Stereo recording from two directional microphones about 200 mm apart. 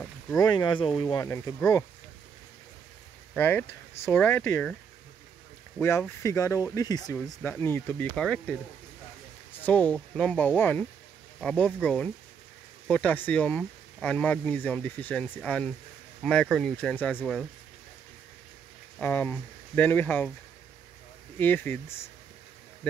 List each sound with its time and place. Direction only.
0.4 s speech: 20° left (ahead or behind)
3.3 s speech: 10° left (ahead or behind)
5.8 s speech: 10° left (ahead or behind)
18.9 s speech: 10° left (ahead or behind)
21.4 s speech: 10° left (ahead or behind)